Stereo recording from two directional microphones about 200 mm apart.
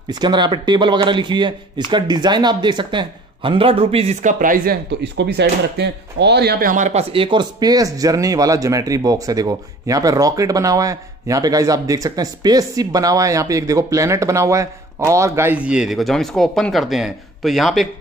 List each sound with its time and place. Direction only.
0.1 s speech: 20° right (ahead or behind); by 17.8 s centre (ahead or behind)